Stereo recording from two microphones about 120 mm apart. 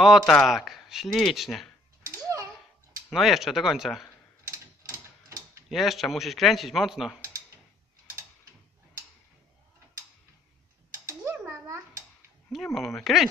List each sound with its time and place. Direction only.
0.0 s speech: centre (ahead or behind)
2.0 s a sound: 25° right (ahead or behind)
3.1 s speech: centre (ahead or behind)
4.5 s ratchet: 25° right (ahead or behind)
5.7 s speech: centre (ahead or behind)
12.5 s speech: centre (ahead or behind)